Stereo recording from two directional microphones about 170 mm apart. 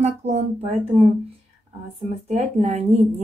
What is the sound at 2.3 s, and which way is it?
Speech, 40° right (ahead or behind).